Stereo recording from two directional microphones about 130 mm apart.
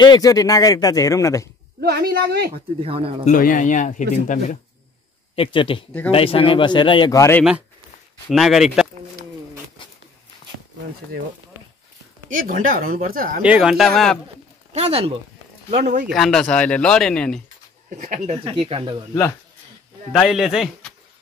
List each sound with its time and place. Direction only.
0.0 s speech: 30° left (ahead or behind)
2.5 s speech: 50° right (ahead or behind)
3.3 s speech: 90° left
5.3 s speech: 40° left (ahead or behind)
7.2 s speech: 20° left (ahead or behind)
8.3 s speech: centre (ahead or behind)
12.3 s speech: 85° right
13.4 s speech: 5° right (ahead or behind)
14.7 s speech: 55° right (ahead or behind)
15.7 s speech: 70° right (ahead or behind)
16.1 s speech: centre (ahead or behind)
17.8 s speech: 70° right (ahead or behind)
18.4 s speech: 45° right (ahead or behind)
20.1 s speech: centre (ahead or behind)